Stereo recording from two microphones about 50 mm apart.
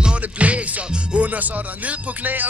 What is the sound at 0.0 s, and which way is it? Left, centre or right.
Music, right.